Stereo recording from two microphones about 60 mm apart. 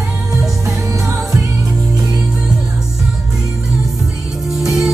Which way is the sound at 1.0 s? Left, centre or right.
Right.